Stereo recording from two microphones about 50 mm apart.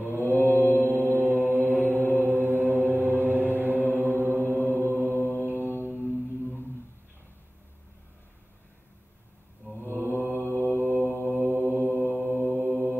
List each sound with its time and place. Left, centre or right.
0.0 s mantra: right
3.9 s chant: right
5.4 s mantra: right
5.8 s mantra: left
9.8 s mantra: right